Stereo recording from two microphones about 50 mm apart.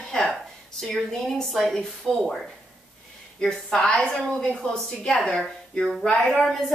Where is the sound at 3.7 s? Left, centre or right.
Centre.